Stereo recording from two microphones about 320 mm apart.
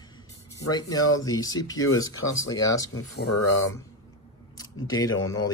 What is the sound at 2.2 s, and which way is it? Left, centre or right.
Speech, left.